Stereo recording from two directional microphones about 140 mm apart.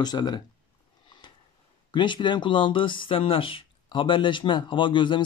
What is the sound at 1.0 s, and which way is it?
Sniff, 35° left (ahead or behind).